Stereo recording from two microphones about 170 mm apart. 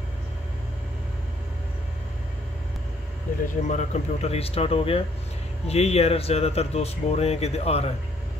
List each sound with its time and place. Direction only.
3.6 s speech: 45° left (ahead or behind)